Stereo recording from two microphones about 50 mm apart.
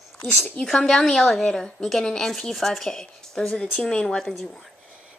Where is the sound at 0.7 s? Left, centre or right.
Centre.